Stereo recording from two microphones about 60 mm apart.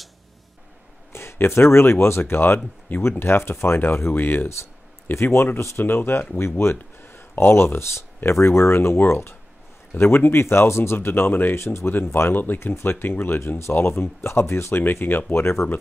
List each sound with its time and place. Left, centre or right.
1.1 s speech: left
5.1 s speech: left
11.5 s speech: left
14.8 s speech: left